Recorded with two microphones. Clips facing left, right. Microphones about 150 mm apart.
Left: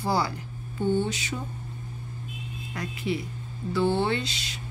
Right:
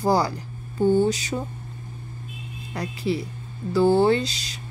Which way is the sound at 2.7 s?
35° right (ahead or behind).